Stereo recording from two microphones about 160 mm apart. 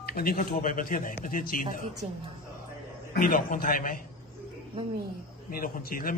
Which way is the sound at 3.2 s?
60° left (ahead or behind).